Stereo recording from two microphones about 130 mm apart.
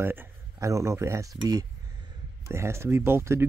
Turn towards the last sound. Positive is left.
turn(degrees=-20)  # may be behind; listen again after turning